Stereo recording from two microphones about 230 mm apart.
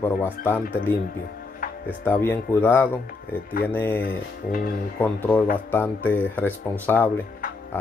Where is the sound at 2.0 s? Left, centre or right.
Centre.